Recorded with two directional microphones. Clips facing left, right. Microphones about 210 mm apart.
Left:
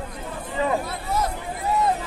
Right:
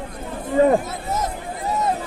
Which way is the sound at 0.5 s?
45° right (ahead or behind).